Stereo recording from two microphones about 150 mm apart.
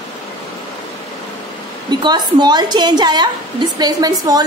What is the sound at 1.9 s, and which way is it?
A woman's voice, 30° right (ahead or behind).